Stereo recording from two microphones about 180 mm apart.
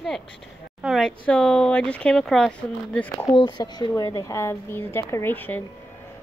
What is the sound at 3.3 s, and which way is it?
Speech, 25° left (ahead or behind).